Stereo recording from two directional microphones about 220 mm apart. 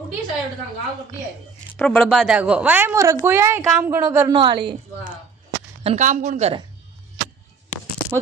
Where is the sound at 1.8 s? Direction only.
5° left (ahead or behind); by 4.7 s 20° right (ahead or behind).